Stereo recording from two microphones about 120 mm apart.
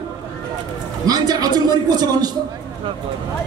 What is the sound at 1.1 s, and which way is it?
A man's voice, 35° right (ahead or behind).